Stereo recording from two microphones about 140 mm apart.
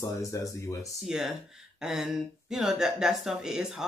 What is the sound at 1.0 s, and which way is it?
Speech, 5° right (ahead or behind).